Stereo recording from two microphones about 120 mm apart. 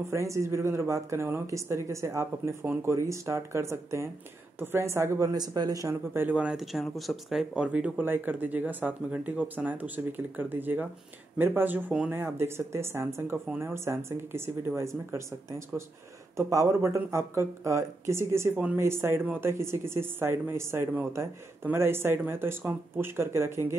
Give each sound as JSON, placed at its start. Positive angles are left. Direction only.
{"t": 0.1, "sound": "speech", "side_deg": -25}
{"t": 16.3, "sound": "speech", "side_deg": -25}